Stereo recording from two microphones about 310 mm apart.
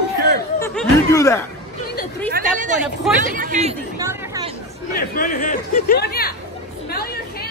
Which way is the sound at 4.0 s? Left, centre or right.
Centre.